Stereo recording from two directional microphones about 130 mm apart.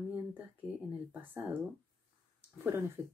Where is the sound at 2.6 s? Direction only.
20° right (ahead or behind).